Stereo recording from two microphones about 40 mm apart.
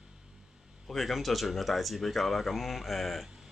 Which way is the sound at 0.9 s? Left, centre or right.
Centre.